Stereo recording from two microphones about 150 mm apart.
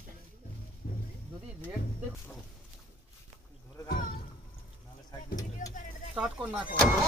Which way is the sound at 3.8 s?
75° left (ahead or behind).